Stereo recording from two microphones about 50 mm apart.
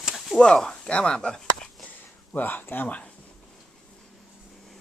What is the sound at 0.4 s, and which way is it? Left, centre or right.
Speech, centre.